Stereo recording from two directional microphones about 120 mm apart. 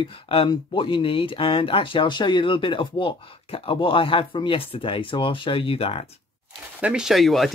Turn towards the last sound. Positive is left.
turn(degrees=0)  # may be behind; listen again after turning